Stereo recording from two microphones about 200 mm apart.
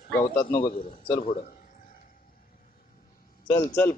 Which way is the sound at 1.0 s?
25° left (ahead or behind).